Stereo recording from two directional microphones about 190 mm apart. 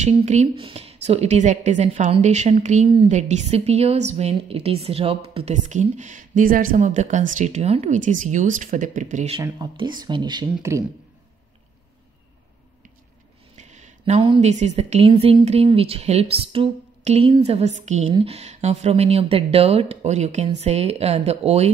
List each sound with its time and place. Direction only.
0.0 s a woman's voice: 35° right (ahead or behind)
9.4 s speech: 20° right (ahead or behind)
13.6 s a woman's voice: 40° right (ahead or behind)